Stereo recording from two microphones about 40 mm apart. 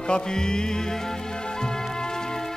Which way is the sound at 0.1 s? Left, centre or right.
Centre.